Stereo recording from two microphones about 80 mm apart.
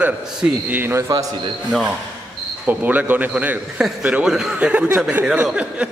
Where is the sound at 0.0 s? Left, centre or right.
Centre; by 1.2 s right.